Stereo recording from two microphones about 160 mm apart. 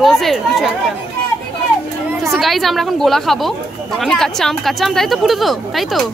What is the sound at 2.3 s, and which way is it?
Speech, centre (ahead or behind).